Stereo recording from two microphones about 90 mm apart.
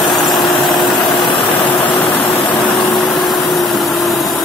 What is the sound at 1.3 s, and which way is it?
Vehicle, 70° left (ahead or behind).